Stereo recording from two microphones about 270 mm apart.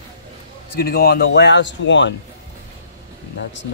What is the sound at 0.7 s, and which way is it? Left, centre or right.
Speech, left.